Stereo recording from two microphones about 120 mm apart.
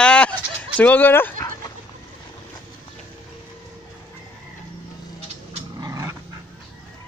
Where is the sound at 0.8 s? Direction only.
15° left (ahead or behind).